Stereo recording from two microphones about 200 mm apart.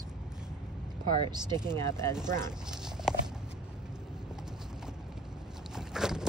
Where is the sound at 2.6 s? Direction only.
5° right (ahead or behind).